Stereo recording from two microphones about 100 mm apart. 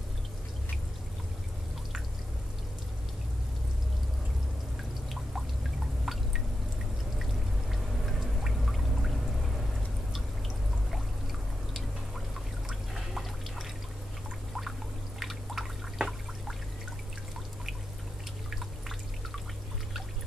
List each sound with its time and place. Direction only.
6.1 s drip: centre (ahead or behind)
7.7 s pour: centre (ahead or behind)
12.6 s pour: centre (ahead or behind)
15.1 s a sound: centre (ahead or behind)